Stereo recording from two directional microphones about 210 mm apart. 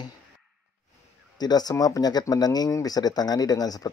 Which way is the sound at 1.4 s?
20° left (ahead or behind).